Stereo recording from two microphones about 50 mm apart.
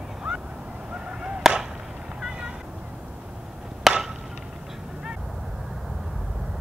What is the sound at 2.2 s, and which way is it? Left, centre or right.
Cat, centre.